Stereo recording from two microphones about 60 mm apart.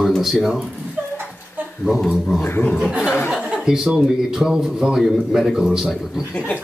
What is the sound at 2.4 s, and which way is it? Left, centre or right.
Speech, left.